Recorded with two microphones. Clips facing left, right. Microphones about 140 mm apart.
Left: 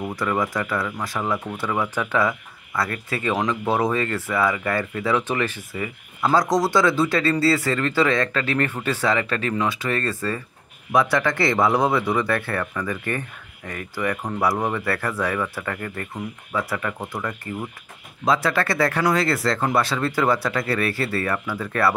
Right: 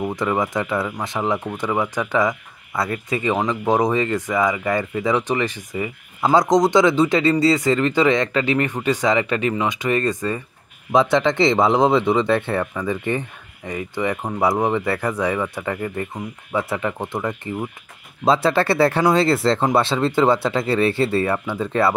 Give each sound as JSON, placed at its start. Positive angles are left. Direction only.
{"t": 0.0, "sound": "speech", "side_deg": -20}